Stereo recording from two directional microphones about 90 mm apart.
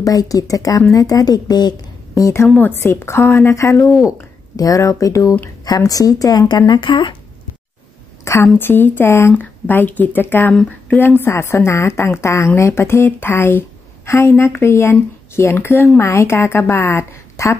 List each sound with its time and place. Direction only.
0.0 s a woman's voice: 40° left (ahead or behind)
2.4 s a woman's voice: 20° left (ahead or behind); by 7.2 s 65° left (ahead or behind)
8.5 s a woman's voice: 25° left (ahead or behind)